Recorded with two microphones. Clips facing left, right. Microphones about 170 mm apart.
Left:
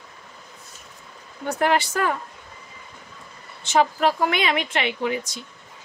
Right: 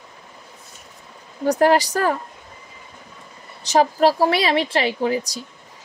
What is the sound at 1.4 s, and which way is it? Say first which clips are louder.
Speech: right 6 dB; 35° right (ahead or behind).